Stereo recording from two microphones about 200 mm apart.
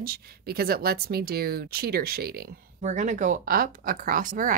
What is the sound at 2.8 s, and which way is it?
Speech, 40° right (ahead or behind).